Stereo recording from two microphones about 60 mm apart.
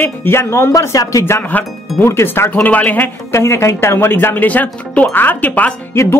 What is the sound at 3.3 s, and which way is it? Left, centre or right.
Speech, left.